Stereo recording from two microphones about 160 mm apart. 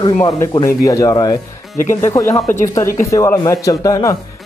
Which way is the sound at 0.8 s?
20° left (ahead or behind).